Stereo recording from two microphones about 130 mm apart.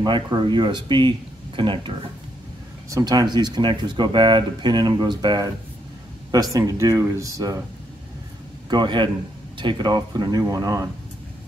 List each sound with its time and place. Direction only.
0.0 s speech: 35° right (ahead or behind)
2.9 s speech: 30° right (ahead or behind)
8.6 s speech: 35° right (ahead or behind)